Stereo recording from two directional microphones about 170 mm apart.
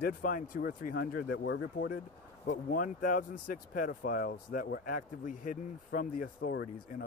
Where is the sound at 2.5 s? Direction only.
50° left (ahead or behind); by 7.0 s 75° left (ahead or behind).